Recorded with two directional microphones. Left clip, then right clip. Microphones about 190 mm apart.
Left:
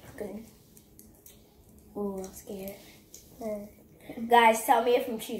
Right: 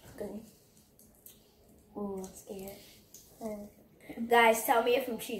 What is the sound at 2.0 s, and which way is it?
Speech, 20° left (ahead or behind).